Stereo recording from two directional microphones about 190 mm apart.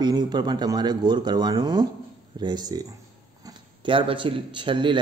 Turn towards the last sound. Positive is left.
turn(degrees=-25)  # may be behind; listen again after turning